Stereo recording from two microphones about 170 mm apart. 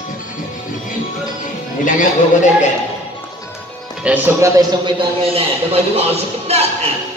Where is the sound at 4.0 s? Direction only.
10° right (ahead or behind).